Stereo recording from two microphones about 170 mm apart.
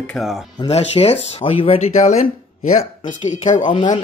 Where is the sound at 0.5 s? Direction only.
30° left (ahead or behind).